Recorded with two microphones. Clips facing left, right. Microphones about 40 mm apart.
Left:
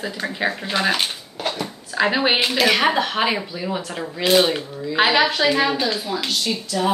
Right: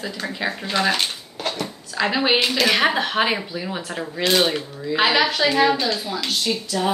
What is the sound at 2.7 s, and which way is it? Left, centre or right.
Speech, centre.